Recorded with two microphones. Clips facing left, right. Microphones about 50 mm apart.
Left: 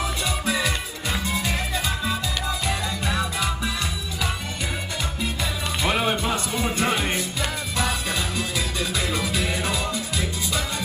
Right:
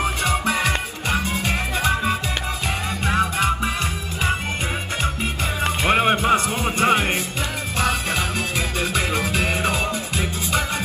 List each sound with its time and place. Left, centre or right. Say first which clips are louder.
0.0 s music: right 5 dB; right
5.6 s music: right 6 dB; right